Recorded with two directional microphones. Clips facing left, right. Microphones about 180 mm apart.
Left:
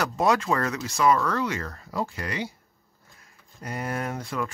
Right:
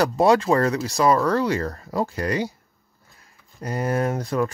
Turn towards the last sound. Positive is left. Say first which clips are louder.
# right 7 dB
turn(degrees=-40)  # may be behind; listen again after turning